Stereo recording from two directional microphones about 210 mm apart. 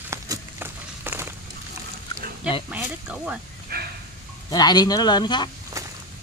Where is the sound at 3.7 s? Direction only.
45° right (ahead or behind).